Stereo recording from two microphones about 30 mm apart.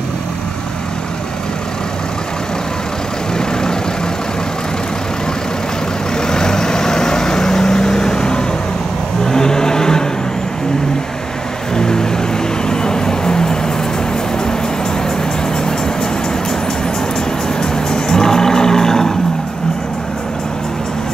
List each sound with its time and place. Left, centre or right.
6.2 s vehicle: left
11.7 s vehicle: left
12.6 s music: left
17.6 s vehicle: left